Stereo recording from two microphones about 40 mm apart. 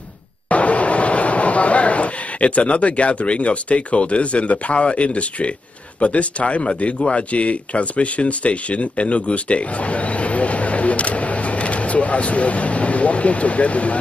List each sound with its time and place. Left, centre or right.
0.5 s speech: left